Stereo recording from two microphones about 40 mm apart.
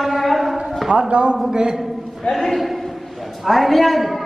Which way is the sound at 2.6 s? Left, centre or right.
Centre.